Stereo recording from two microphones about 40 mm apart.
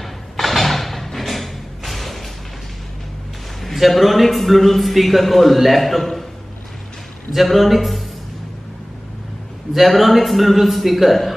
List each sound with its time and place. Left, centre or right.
0.0 s a sound: centre
3.6 s a man's voice: centre
7.3 s a man's voice: centre
9.8 s a man's voice: centre